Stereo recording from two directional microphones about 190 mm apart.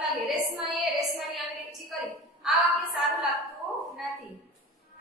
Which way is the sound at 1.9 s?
Centre (ahead or behind).